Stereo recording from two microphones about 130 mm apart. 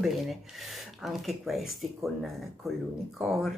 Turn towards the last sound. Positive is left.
turn(degrees=0)  # may be behind; listen again after turning